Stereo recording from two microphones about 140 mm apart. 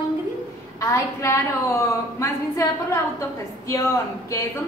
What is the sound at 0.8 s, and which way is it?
A woman's voice, 20° left (ahead or behind).